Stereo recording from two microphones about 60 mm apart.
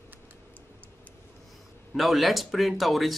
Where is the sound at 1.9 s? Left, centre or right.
Centre.